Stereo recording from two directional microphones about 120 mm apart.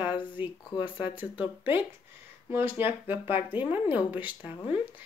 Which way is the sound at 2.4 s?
20° right (ahead or behind).